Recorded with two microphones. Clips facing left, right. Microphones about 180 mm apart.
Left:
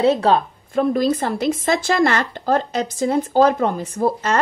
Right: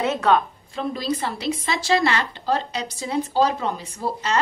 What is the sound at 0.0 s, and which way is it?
Speech, 35° left (ahead or behind).